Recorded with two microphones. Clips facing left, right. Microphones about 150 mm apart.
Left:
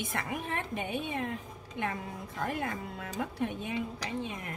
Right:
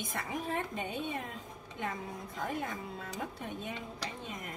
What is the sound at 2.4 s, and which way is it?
A woman's voice, 70° left (ahead or behind).